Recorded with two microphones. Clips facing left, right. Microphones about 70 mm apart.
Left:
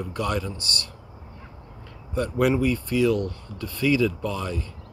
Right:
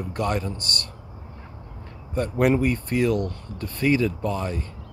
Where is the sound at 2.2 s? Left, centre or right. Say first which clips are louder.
Right 1 dB; right.